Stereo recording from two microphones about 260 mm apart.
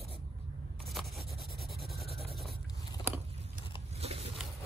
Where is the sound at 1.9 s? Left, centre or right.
Centre.